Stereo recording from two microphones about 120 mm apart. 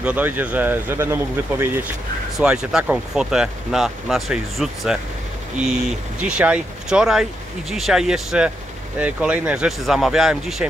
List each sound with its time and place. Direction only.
0.0 s speech: 15° right (ahead or behind)
2.3 s speech: 5° right (ahead or behind)
6.2 s speech: 10° right (ahead or behind)